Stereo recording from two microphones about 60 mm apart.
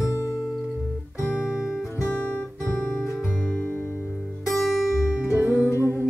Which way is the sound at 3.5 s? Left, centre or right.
Centre.